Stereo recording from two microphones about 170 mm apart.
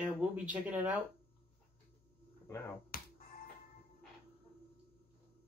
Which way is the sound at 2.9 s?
60° left (ahead or behind).